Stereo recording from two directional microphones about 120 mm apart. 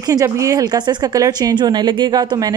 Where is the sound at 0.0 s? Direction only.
30° right (ahead or behind).